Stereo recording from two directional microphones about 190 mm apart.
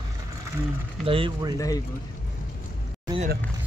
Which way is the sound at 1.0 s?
25° right (ahead or behind).